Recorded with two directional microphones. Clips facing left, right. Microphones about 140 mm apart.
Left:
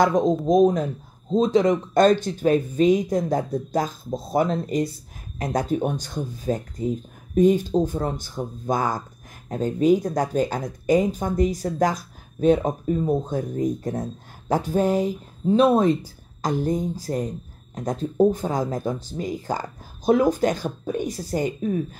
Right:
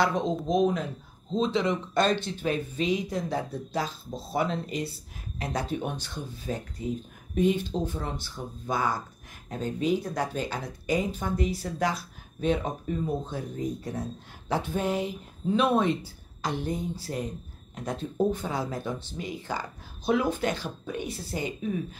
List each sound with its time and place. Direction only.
0.0 s speech: 45° left (ahead or behind)